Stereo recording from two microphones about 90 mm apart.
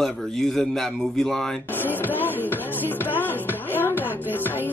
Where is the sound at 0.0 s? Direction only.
5° left (ahead or behind).